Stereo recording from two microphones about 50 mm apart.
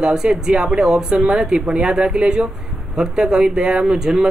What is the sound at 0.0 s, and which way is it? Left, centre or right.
Speech, centre.